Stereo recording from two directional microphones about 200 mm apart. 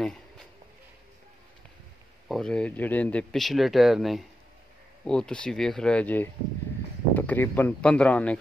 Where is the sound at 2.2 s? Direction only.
Centre (ahead or behind).